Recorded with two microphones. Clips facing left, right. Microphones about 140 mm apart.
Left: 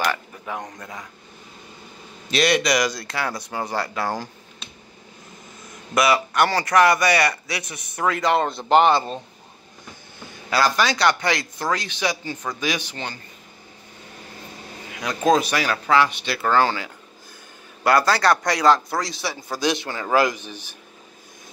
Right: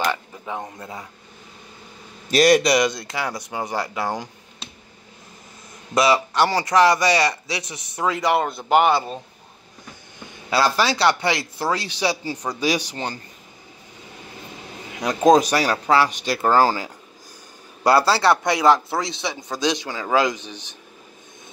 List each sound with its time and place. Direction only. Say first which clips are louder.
0.0 s a sound: right 1 dB; 20° right (ahead or behind)
0.7 s a man's voice: right 2 dB; 25° right (ahead or behind)
2.3 s a man's voice: right 4 dB; 40° right (ahead or behind); by 4.3 s 15° right (ahead or behind)
5.9 s a man's voice: right 1 dB; 25° right (ahead or behind); by 9.2 s 10° right (ahead or behind)
10.5 s a man's voice: right 1 dB; 30° right (ahead or behind)
12.3 s speech: right 2 dB; 10° right (ahead or behind)
12.5 s speech: right 6 dB; 35° right (ahead or behind)
15.0 s speech: right 4 dB; 15° right (ahead or behind)
15.4 s a man's voice: right 3 dB; 35° right (ahead or behind); by 20.6 s 20° right (ahead or behind)